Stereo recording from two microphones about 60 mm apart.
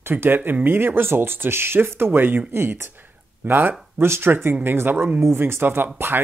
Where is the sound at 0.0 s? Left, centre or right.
Right.